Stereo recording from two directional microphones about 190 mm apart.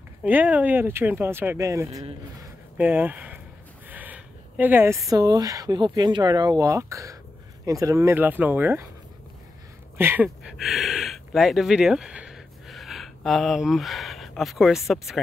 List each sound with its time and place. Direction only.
0.2 s a woman's voice: 10° right (ahead or behind)
9.9 s speech: 10° right (ahead or behind)